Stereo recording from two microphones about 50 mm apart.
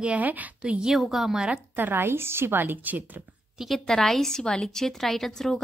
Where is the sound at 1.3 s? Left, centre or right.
Centre.